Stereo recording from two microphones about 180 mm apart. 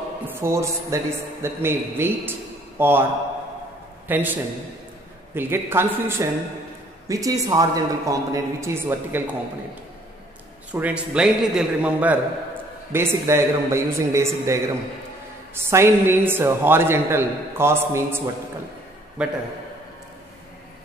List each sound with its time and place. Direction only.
0.3 s a man's voice: 15° right (ahead or behind)
4.1 s a man's voice: 10° right (ahead or behind)
10.7 s a man's voice: 10° right (ahead or behind)